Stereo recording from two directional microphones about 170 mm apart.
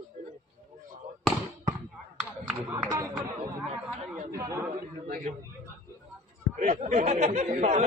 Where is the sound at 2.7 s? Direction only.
20° right (ahead or behind).